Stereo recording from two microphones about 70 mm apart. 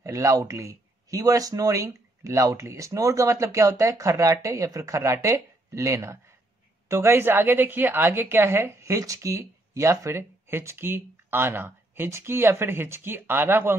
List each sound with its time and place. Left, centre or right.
0.0 s a woman's voice: right